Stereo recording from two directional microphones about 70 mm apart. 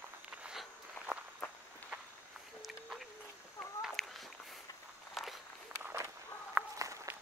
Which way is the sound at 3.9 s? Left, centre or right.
Centre.